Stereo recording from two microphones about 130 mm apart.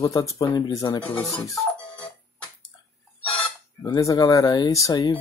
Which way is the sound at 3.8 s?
25° left (ahead or behind).